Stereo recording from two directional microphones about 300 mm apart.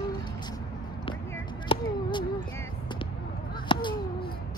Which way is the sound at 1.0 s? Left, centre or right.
Centre.